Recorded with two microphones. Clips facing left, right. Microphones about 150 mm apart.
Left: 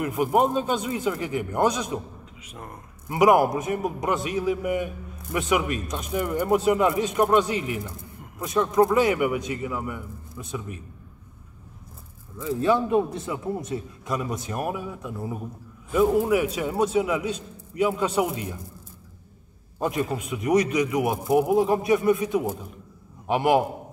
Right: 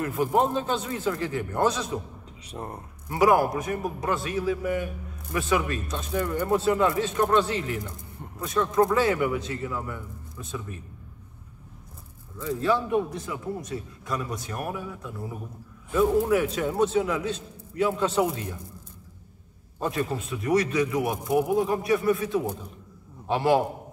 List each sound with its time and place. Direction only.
0.0 s a man's voice: 15° left (ahead or behind)
2.4 s speech: 35° right (ahead or behind)
3.1 s a man's voice: 20° left (ahead or behind)
12.6 s a man's voice: 20° left (ahead or behind)
19.8 s a man's voice: 15° left (ahead or behind)